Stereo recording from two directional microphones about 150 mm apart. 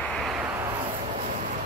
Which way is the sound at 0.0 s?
Centre (ahead or behind).